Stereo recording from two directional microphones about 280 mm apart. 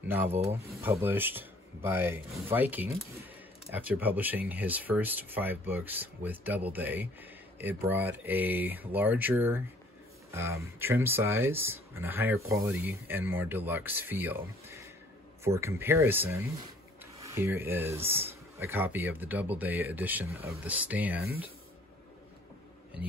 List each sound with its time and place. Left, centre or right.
0.1 s speech: centre